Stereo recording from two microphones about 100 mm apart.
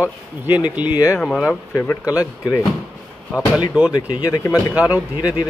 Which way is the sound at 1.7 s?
15° left (ahead or behind).